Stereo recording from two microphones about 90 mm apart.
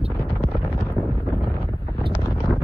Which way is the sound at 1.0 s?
35° left (ahead or behind).